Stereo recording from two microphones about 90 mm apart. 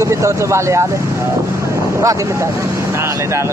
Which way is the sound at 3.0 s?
30° right (ahead or behind).